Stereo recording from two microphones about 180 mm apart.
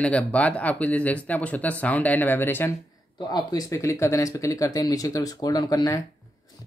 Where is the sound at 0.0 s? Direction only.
5° left (ahead or behind).